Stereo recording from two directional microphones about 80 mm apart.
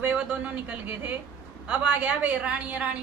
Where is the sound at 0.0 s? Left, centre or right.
Centre.